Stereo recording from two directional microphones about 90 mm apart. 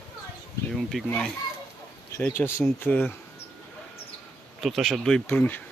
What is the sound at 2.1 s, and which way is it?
Speech, 25° left (ahead or behind).